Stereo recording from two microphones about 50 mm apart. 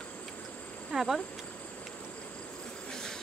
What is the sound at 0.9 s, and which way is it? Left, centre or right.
Insect, centre.